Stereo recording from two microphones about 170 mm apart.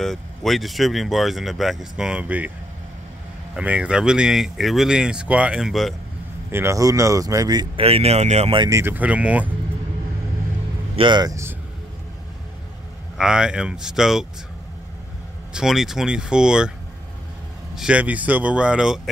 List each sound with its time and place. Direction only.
0.0 s speech: centre (ahead or behind)
3.5 s speech: 5° right (ahead or behind)
6.5 s speech: 15° right (ahead or behind); by 8.6 s 35° right (ahead or behind)
8.6 s speech: 15° right (ahead or behind)
11.0 s speech: 25° right (ahead or behind)
13.2 s speech: 5° right (ahead or behind)
15.5 s speech: centre (ahead or behind)
17.7 s speech: 5° right (ahead or behind)